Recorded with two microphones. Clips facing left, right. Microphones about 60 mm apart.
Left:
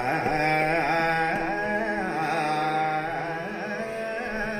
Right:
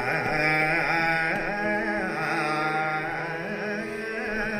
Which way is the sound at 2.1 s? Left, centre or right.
Right.